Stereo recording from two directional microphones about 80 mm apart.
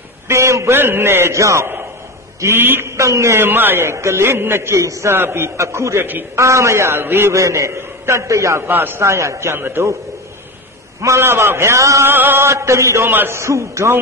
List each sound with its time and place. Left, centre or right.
0.3 s a man's voice: right
8.6 s a man's voice: right
11.0 s a man's voice: right
12.1 s a man's voice: right